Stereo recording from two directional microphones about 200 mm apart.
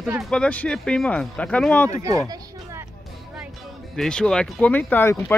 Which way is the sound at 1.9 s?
15° right (ahead or behind).